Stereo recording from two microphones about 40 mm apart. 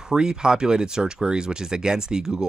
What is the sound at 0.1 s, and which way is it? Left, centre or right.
Speech, centre.